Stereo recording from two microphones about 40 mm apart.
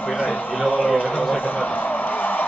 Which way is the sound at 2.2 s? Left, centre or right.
Left.